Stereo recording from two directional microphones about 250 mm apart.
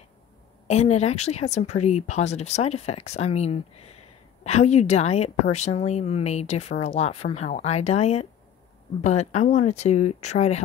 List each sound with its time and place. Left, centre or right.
0.7 s speech: left